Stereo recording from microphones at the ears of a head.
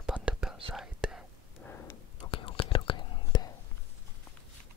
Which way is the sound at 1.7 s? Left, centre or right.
Left.